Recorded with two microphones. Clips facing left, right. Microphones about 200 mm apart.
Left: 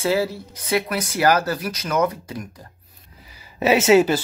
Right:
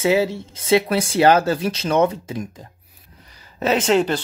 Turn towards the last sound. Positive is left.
turn(degrees=5)  # may be behind; listen again after turning